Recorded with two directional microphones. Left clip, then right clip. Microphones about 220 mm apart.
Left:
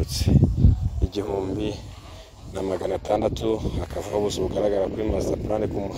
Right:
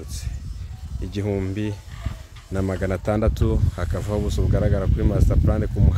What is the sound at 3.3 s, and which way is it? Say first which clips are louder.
Speech: left 2 dB; 25° left (ahead or behind).